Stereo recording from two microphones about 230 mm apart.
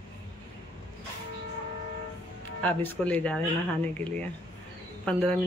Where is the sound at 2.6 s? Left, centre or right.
Centre.